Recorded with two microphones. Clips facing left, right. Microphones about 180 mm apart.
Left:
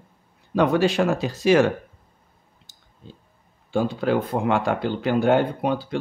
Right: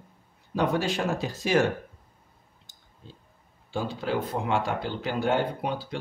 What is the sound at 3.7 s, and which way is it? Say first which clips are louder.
Speech: left 7 dB; 55° left (ahead or behind).